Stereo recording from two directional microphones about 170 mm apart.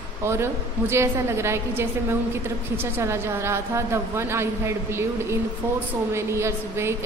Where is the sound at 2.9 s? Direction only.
15° right (ahead or behind).